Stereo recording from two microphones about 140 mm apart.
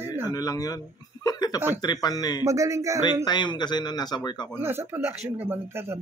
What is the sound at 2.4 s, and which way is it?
Speech, 25° right (ahead or behind).